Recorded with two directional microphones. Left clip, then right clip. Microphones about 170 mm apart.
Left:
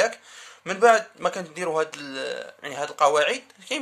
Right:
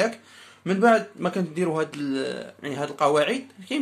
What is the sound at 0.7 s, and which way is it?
Speech, 40° left (ahead or behind).